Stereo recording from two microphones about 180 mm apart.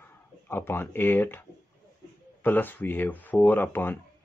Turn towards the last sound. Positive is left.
turn(degrees=10)  # may be behind; listen again after turning